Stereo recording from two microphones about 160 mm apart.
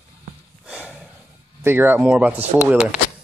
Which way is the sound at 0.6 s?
5° right (ahead or behind).